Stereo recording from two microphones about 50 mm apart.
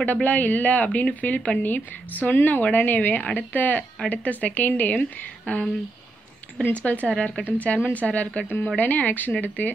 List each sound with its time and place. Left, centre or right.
0.0 s speech: left
6.7 s a woman's voice: left